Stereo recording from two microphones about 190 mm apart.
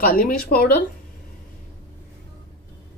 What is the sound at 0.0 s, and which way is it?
Speech, 45° left (ahead or behind).